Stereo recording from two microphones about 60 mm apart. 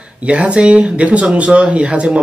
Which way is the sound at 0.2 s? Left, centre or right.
Right.